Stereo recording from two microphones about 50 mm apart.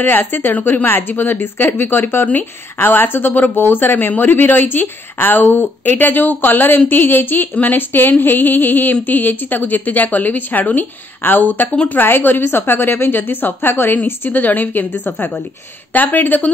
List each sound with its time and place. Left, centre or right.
0.0 s a woman's voice: left
11.7 s speech: left
12.0 s a woman's voice: left